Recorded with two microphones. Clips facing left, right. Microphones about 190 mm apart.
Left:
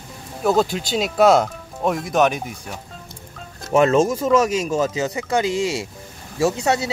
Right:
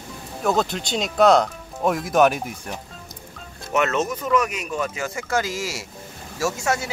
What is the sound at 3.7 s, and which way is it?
Speech, 30° left (ahead or behind).